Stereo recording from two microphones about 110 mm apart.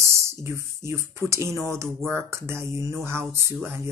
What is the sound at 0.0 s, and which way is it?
Speech, 25° right (ahead or behind).